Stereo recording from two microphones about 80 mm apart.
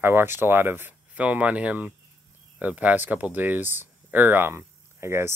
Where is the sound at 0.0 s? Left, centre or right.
Right.